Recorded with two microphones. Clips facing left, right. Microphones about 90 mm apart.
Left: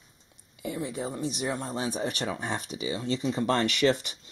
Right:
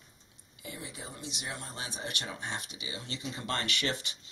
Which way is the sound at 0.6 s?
55° left (ahead or behind).